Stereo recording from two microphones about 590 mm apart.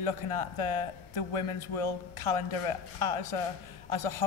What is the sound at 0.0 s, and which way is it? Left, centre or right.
A man's voice, left.